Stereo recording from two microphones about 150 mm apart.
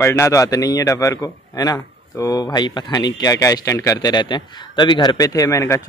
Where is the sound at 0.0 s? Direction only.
15° left (ahead or behind).